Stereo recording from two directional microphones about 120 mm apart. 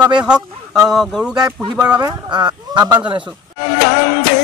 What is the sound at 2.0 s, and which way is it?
Speech, 35° right (ahead or behind).